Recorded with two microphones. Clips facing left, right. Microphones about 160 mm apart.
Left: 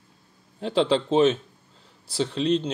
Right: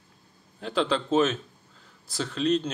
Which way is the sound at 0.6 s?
30° left (ahead or behind).